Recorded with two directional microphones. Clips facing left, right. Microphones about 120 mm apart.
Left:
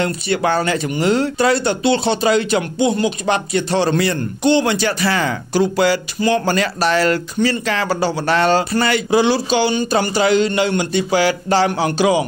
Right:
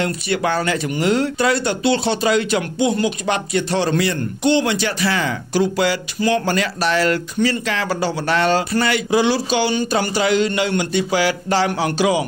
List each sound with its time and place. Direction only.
0.0 s speech: 35° left (ahead or behind)